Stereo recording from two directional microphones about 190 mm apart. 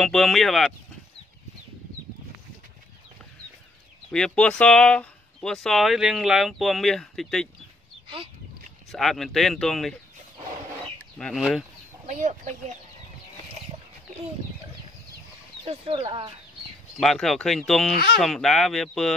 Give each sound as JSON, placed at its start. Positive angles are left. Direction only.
{"t": 0.0, "sound": "speech", "side_deg": 0}
{"t": 4.1, "sound": "speech", "side_deg": 5}
{"t": 8.9, "sound": "speech", "side_deg": 0}
{"t": 11.1, "sound": "speech", "side_deg": 0}
{"t": 12.1, "sound": "speech", "side_deg": -40}
{"t": 15.6, "sound": "speech", "side_deg": -30}
{"t": 17.0, "sound": "speech", "side_deg": 0}